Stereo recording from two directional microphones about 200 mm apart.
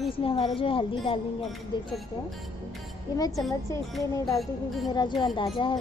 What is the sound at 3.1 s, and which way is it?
Speech, 20° left (ahead or behind).